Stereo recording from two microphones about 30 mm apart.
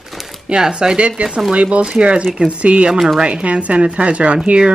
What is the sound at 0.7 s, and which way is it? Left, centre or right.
Speech, right.